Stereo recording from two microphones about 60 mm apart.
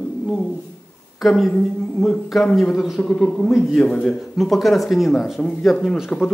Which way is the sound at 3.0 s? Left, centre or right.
Centre.